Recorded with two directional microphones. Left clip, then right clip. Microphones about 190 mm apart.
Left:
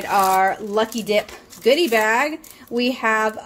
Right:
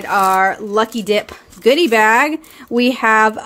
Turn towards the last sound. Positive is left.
turn(degrees=-40)  # may be behind; listen again after turning